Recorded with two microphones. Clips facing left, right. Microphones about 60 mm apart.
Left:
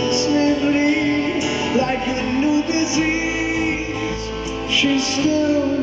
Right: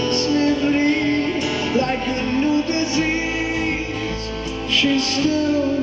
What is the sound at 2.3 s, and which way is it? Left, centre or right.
Music, centre.